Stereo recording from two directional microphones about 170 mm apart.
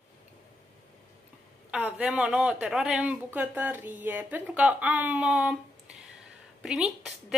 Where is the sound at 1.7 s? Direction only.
5° right (ahead or behind).